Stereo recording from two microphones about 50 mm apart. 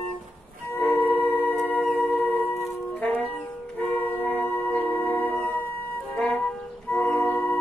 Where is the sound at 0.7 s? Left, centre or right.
Left.